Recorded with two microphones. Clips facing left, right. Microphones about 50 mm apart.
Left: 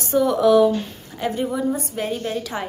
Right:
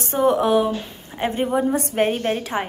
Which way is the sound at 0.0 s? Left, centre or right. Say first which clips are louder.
Left 1 dB; right.